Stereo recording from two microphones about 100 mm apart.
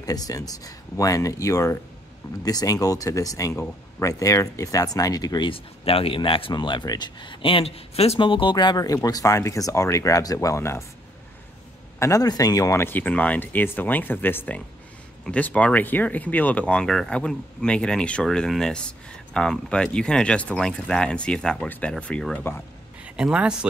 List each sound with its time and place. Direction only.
0.0 s speech: 40° left (ahead or behind)
5.5 s speech: 70° left (ahead or behind)
6.5 s speech: 50° left (ahead or behind); by 10.8 s 30° left (ahead or behind)
12.0 s speech: 35° left (ahead or behind)
12.8 s speech: 15° left (ahead or behind)
23.0 s speech: 10° right (ahead or behind)